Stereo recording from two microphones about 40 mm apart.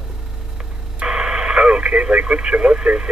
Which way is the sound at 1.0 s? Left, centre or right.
Right.